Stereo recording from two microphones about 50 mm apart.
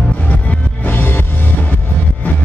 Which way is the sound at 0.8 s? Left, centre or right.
Left.